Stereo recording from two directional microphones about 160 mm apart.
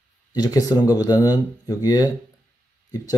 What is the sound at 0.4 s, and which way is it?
Speech, 25° left (ahead or behind).